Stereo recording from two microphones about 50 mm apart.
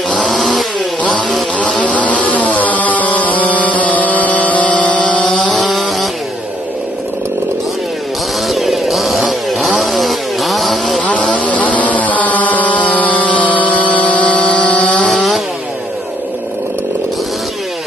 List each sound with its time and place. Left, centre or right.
0.3 s chainsaw: centre
1.8 s music: left
5.3 s a sound: centre
5.6 s chainsaw: centre
8.5 s chainsaw: centre
11.0 s a sound: left